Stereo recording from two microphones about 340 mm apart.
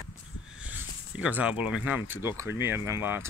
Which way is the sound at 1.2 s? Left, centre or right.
Centre.